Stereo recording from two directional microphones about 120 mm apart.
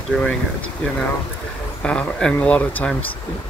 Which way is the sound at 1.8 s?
10° left (ahead or behind).